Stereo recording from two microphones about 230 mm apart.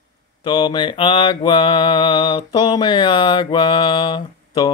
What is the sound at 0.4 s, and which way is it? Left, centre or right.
Mantra, centre.